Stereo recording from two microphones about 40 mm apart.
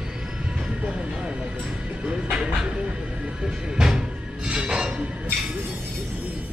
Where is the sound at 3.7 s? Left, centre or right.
Centre.